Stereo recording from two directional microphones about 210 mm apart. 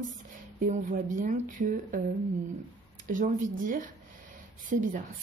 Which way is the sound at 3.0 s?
40° right (ahead or behind).